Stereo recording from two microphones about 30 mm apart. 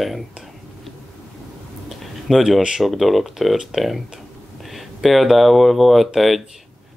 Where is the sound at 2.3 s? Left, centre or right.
Centre.